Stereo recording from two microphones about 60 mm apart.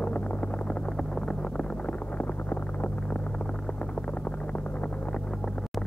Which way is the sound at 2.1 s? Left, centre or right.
Left.